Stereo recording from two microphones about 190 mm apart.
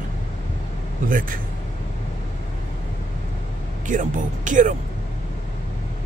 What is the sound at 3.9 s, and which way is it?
Speech, 40° right (ahead or behind).